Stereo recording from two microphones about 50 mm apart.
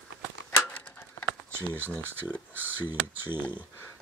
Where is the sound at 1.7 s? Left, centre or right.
Right.